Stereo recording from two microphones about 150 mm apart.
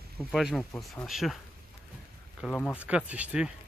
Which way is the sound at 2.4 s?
10° left (ahead or behind).